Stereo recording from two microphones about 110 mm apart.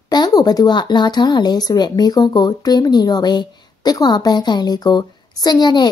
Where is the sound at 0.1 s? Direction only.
35° left (ahead or behind).